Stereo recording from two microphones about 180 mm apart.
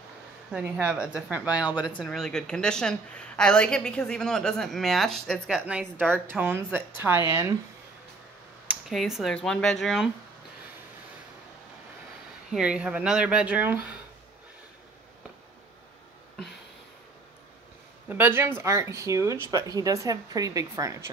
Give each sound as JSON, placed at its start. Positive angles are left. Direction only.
{"t": 0.5, "sound": "a woman's voice", "side_deg": -5}
{"t": 1.8, "sound": "speech", "side_deg": 25}
{"t": 2.0, "sound": "a woman's voice", "side_deg": 5}
{"t": 8.8, "sound": "a woman's voice", "side_deg": 0}
{"t": 12.5, "sound": "a woman's voice", "side_deg": -5}
{"t": 18.0, "sound": "a woman's voice", "side_deg": -10}